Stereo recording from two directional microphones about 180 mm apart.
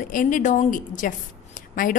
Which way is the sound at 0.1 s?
45° left (ahead or behind).